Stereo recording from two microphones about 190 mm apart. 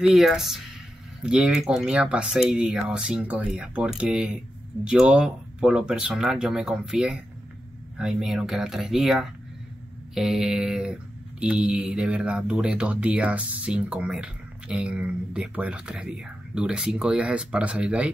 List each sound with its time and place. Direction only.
0.0 s mantra: centre (ahead or behind)